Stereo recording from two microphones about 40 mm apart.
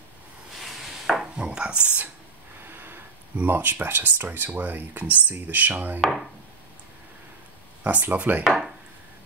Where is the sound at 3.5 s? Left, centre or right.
Right.